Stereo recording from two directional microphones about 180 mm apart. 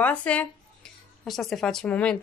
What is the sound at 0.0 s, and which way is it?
Speech, 5° left (ahead or behind).